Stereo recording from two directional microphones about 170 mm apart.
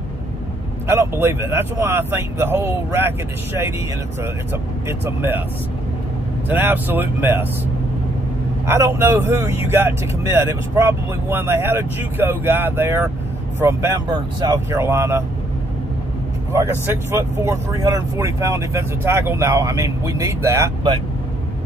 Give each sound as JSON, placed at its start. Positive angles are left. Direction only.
{"t": 0.8, "sound": "speech", "side_deg": -15}
{"t": 4.8, "sound": "speech", "side_deg": -15}
{"t": 6.5, "sound": "speech", "side_deg": -10}
{"t": 8.6, "sound": "speech", "side_deg": -15}
{"t": 16.5, "sound": "speech", "side_deg": -15}